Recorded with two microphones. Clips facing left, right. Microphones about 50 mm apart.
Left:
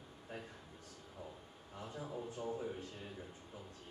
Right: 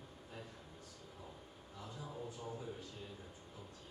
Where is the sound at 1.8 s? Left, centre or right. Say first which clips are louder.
Left 3 dB; left.